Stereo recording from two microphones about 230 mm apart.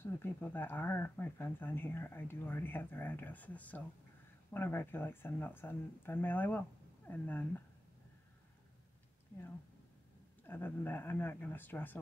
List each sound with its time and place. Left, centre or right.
0.0 s speech: centre
10.4 s speech: centre